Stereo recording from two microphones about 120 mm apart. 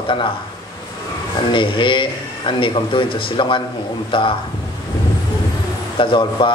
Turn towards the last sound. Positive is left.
turn(degrees=45)  # may be behind; listen again after turning